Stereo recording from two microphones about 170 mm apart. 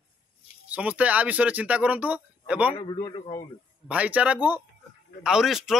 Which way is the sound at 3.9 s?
10° right (ahead or behind).